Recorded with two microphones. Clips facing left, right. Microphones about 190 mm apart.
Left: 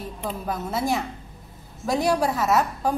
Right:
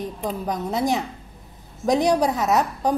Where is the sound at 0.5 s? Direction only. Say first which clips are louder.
Right 2 dB; 15° right (ahead or behind).